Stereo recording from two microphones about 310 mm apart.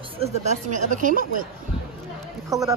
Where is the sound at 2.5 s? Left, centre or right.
Centre.